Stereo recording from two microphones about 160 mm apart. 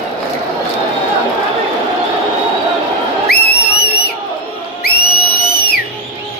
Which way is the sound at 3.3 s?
90° left.